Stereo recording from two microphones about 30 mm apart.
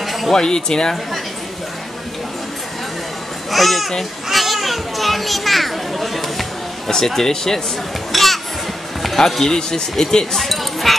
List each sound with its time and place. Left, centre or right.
0.0 s music: centre
0.3 s speech: left
3.5 s a child's voice: centre
4.3 s children playing: centre
7.2 s speech: centre
8.1 s children playing: centre
9.0 s music: centre
9.4 s speech: centre
10.3 s chink: centre